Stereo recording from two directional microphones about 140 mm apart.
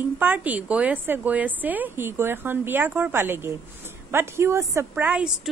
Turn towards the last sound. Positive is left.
turn(degrees=-10)  # may be behind; listen again after turning